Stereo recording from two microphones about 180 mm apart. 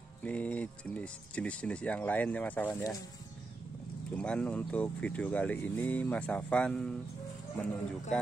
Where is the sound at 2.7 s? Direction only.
20° left (ahead or behind).